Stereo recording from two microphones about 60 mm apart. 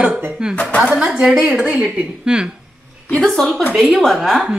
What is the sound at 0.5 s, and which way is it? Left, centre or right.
Speech, left.